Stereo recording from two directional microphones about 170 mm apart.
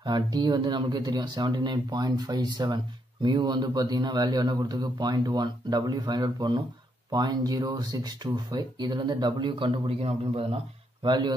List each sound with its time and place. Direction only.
0.0 s speech: 25° right (ahead or behind)